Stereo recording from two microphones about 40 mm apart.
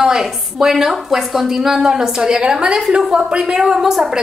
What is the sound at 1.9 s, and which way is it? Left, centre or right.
A woman's voice, centre.